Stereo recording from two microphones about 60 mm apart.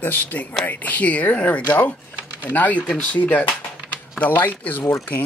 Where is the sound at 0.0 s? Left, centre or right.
Left.